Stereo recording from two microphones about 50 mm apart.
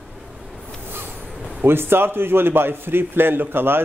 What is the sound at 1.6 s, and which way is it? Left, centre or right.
A man's voice, right.